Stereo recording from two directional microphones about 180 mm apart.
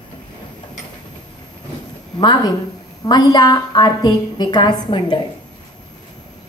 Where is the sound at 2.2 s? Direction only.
25° left (ahead or behind).